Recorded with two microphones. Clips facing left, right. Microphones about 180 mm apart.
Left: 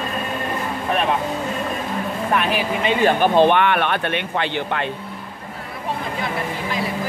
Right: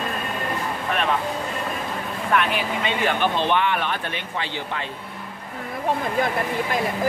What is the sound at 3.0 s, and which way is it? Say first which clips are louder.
Speech: left 8 dB; 45° left (ahead or behind).